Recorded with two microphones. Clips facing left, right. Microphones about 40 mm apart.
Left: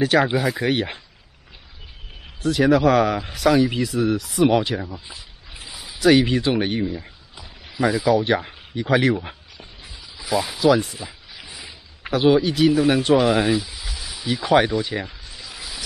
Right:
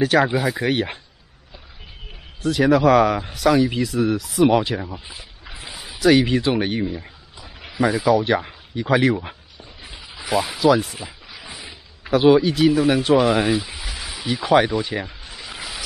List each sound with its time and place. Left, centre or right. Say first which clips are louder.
0.0 s speech: right 1 dB; centre
2.4 s speech: right 1 dB; centre
5.5 s a sound: right 3 dB; right
5.9 s speech: even; centre
10.1 s a sound: right 1 dB; right
10.6 s speech: even; centre
13.7 s a sound: right 2 dB; right
14.2 s speech: right 1 dB; centre
15.4 s vehicle: right 3 dB; right